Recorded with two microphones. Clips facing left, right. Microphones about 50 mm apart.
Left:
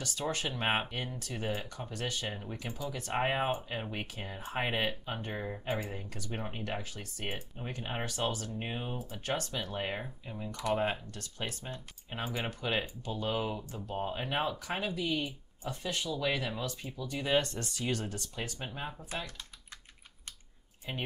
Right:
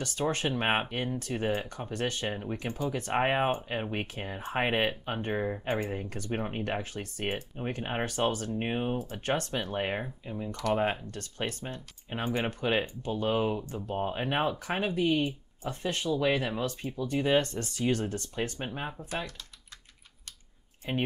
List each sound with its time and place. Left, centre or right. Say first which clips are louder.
0.0 s speech: right 5 dB; right
10.0 s speech: right 5 dB; centre
10.7 s speech: right 3 dB; right
11.1 s speech: right 5 dB; right
12.1 s speech: right 6 dB; right
12.4 s speech: right 5 dB; right
18.7 s speech: right 4 dB; right
20.9 s speech: right 7 dB; right